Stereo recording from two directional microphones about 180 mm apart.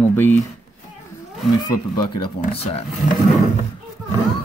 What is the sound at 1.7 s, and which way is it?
Speech, 25° left (ahead or behind).